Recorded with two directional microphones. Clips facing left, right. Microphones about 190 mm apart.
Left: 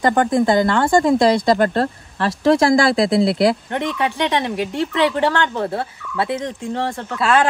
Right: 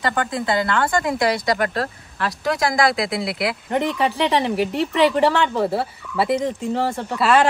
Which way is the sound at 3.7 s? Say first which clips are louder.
Right 1 dB; centre (ahead or behind).